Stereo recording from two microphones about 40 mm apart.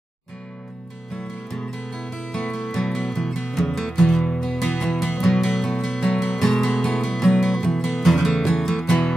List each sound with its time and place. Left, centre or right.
1.5 s music: centre